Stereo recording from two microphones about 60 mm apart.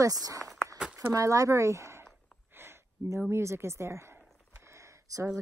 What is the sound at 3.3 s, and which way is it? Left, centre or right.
Speech, right.